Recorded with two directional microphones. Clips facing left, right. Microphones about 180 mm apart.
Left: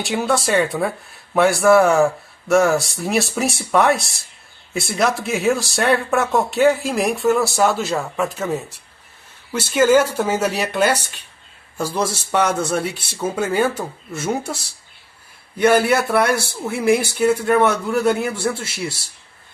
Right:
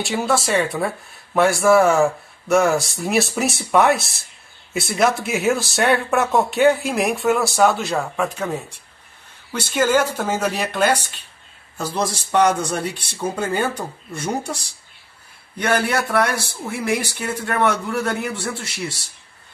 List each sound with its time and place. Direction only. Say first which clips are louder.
0.0 s speech: left 1 dB; centre (ahead or behind)
15.5 s speech: left 5 dB; 10° left (ahead or behind)